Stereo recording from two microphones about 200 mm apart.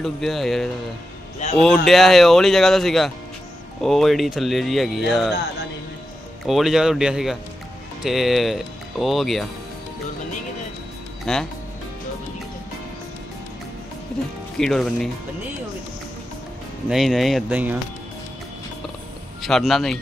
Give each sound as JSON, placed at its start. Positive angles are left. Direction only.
{"t": 0.0, "sound": "speech", "side_deg": 0}
{"t": 1.4, "sound": "a man's voice", "side_deg": 35}
{"t": 1.9, "sound": "speech", "side_deg": 0}
{"t": 6.4, "sound": "speech", "side_deg": 0}
{"t": 11.3, "sound": "speech", "side_deg": 0}
{"t": 14.6, "sound": "speech", "side_deg": 5}
{"t": 16.9, "sound": "speech", "side_deg": 0}
{"t": 19.4, "sound": "speech", "side_deg": 0}